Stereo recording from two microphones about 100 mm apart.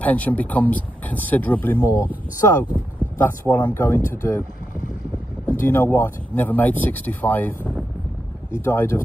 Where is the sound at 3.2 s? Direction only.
20° left (ahead or behind).